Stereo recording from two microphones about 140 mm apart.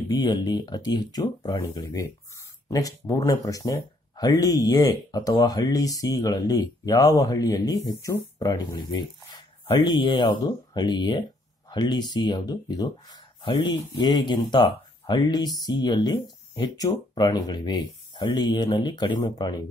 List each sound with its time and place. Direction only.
0.1 s speech: 30° left (ahead or behind)
3.1 s speech: 25° left (ahead or behind)